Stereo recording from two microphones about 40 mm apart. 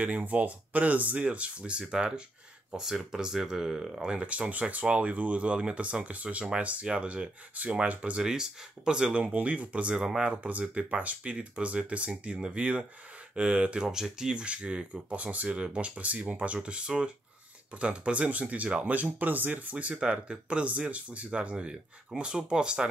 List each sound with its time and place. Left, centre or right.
0.0 s speech: right; by 3.9 s centre
3.9 s speech: right
4.3 s speech: right
7.6 s speech: right
8.2 s speech: centre
13.8 s speech: centre
14.3 s speech: right
19.1 s speech: right
20.0 s speech: right